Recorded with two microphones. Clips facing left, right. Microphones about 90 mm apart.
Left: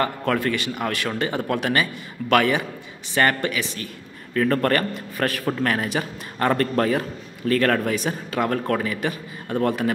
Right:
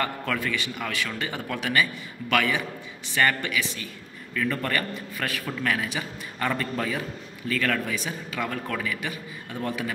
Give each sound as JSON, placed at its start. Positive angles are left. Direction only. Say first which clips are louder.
{"t": 0.2, "sound": "a man's voice", "louder": "left 6 dB", "side_deg": 45}
{"t": 4.5, "sound": "a man's voice", "louder": "left 7 dB", "side_deg": 50}
{"t": 7.4, "sound": "a man's voice", "louder": "left 8 dB", "side_deg": 85}
{"t": 7.8, "sound": "a man's voice", "louder": "left 7 dB", "side_deg": 55}
{"t": 9.0, "sound": "a man's voice", "louder": "left 6 dB", "side_deg": 60}